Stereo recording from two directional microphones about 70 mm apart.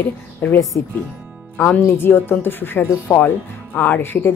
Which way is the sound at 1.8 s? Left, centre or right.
Left.